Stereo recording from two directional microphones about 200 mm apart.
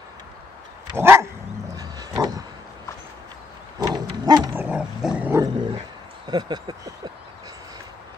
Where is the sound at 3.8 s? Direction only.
20° right (ahead or behind).